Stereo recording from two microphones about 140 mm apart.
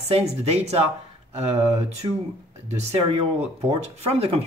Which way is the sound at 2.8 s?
50° right (ahead or behind).